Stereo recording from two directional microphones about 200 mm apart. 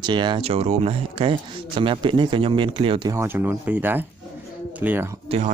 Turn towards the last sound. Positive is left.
turn(degrees=-35)  # may be behind; listen again after turning